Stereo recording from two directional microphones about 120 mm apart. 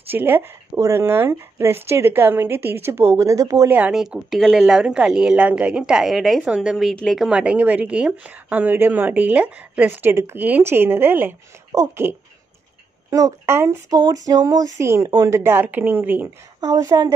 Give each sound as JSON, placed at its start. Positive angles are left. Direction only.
{"t": 0.1, "sound": "speech", "side_deg": -15}
{"t": 3.7, "sound": "a woman's voice", "side_deg": -10}
{"t": 16.6, "sound": "a woman's voice", "side_deg": -30}